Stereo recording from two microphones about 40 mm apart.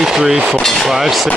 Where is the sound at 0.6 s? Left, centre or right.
Centre.